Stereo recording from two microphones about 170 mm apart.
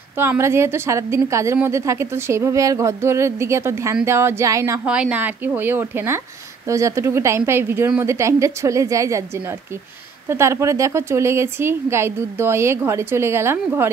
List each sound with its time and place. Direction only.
0.2 s a woman's voice: 15° right (ahead or behind)
4.8 s a woman's voice: 5° right (ahead or behind)
10.3 s a woman's voice: 15° right (ahead or behind)